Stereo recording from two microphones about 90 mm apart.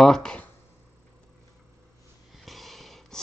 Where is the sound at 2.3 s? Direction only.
Centre (ahead or behind).